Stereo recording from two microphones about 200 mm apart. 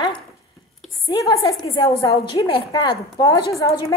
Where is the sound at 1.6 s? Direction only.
20° left (ahead or behind).